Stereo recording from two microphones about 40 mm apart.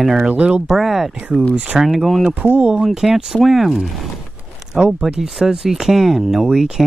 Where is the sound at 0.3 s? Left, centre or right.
Right.